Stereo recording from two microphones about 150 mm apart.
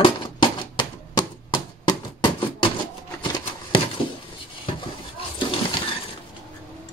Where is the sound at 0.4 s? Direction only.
30° left (ahead or behind).